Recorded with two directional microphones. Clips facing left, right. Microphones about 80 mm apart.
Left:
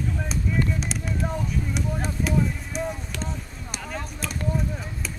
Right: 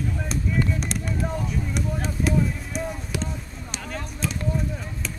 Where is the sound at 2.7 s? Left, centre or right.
Centre.